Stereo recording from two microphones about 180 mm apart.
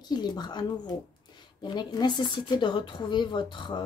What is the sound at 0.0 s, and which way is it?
Speech, 25° left (ahead or behind).